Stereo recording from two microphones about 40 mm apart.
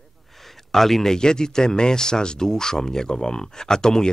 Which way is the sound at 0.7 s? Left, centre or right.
Centre.